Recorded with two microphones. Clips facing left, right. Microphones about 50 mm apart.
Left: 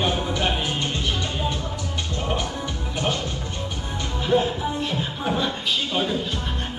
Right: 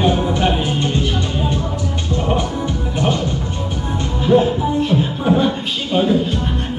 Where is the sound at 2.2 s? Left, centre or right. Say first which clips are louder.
Right 7 dB; centre.